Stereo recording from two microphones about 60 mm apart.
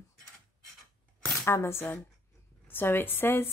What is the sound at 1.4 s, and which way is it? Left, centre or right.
Speech, left.